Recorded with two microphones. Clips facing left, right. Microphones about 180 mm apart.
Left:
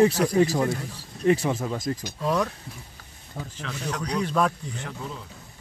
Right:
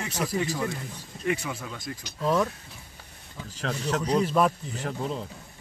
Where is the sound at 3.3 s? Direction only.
55° left (ahead or behind).